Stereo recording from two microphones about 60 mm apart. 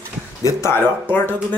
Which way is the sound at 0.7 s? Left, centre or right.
Left.